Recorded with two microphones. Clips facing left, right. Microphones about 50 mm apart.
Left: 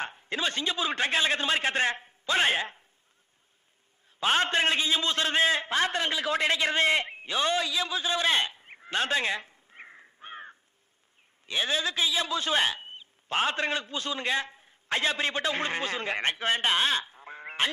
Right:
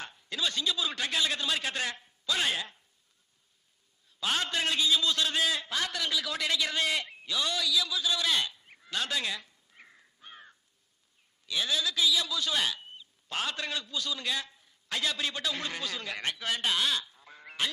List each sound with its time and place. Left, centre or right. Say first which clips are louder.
0.0 s a man's voice: left 4 dB; left
4.2 s a man's voice: left 6 dB; left